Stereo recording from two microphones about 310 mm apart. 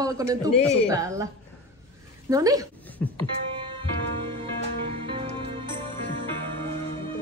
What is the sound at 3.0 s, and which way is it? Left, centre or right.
Music, centre.